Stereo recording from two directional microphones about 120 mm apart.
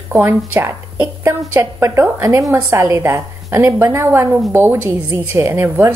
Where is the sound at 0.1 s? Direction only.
20° right (ahead or behind).